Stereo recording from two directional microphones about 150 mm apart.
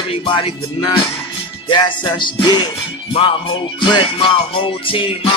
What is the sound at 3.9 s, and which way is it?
Music, 35° left (ahead or behind).